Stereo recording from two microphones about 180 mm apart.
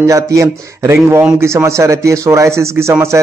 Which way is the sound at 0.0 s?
15° right (ahead or behind).